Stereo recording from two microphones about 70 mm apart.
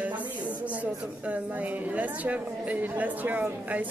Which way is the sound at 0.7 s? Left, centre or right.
Right.